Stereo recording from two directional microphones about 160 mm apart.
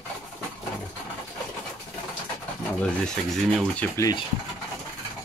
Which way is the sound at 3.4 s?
5° left (ahead or behind).